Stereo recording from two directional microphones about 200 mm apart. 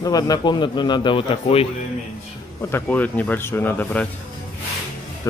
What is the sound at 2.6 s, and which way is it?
Speech, 10° left (ahead or behind).